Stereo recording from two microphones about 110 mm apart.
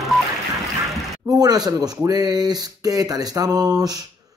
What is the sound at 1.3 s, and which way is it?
Speech, 35° right (ahead or behind).